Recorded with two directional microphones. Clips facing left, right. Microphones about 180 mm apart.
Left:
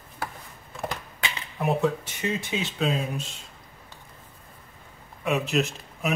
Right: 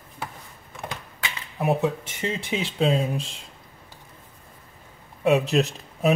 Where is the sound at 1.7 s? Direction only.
25° right (ahead or behind).